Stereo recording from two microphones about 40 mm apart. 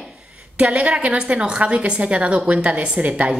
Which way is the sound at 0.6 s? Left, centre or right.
Right.